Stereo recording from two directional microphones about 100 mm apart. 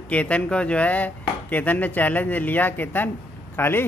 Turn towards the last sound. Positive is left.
turn(degrees=20)  # may be behind; listen again after turning